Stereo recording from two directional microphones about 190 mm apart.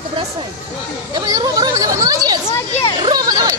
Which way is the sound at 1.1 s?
20° right (ahead or behind).